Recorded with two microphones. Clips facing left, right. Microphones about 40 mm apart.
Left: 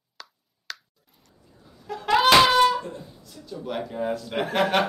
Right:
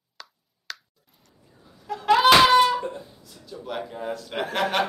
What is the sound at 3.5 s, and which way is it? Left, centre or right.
A man's voice, centre.